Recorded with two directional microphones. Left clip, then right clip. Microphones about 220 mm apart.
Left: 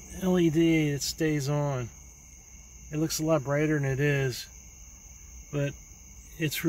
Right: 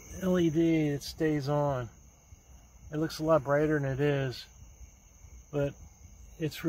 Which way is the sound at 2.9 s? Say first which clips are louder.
Even; 5° right (ahead or behind).